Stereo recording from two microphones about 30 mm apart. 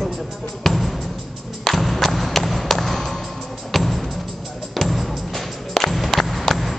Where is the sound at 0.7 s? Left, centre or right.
Centre.